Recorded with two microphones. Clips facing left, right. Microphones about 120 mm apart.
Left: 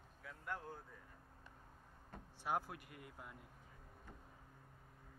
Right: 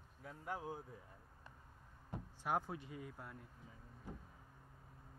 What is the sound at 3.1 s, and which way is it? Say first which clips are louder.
Speech: right 2 dB; 5° left (ahead or behind).